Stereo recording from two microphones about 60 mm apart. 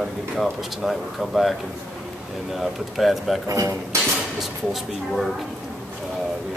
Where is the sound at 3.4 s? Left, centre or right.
Right.